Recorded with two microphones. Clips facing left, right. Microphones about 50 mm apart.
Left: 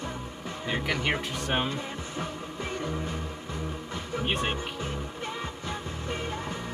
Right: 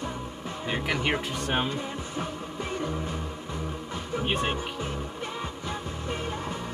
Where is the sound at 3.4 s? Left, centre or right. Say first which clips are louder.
Right 1 dB; left.